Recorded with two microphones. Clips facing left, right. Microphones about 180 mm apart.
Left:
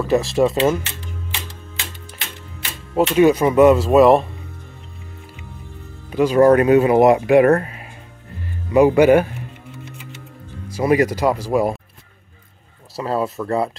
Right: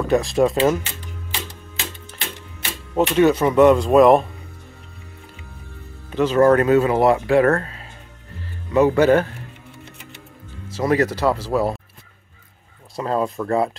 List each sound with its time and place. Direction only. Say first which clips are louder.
0.1 s speech: left 1 dB; centre (ahead or behind)
2.9 s speech: left 2 dB; 10° left (ahead or behind)
6.1 s speech: left 2 dB; 10° left (ahead or behind)
10.7 s speech: left 2 dB; 10° left (ahead or behind)
12.9 s speech: even; 5° left (ahead or behind)